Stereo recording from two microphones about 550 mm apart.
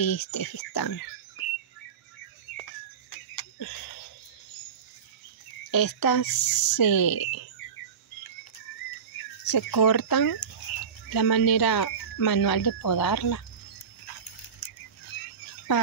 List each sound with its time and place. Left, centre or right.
0.0 s speech: left
3.3 s a sound: left
5.7 s speech: left
9.4 s speech: left